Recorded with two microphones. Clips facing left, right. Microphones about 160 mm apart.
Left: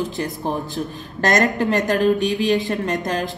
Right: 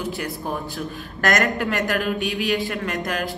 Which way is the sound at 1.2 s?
25° left (ahead or behind).